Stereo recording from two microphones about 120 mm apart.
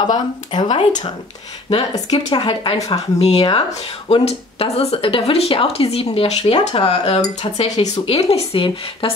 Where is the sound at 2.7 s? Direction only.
30° left (ahead or behind).